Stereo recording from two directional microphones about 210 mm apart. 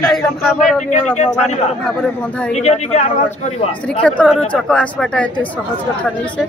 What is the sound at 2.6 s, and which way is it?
Speech, 35° left (ahead or behind).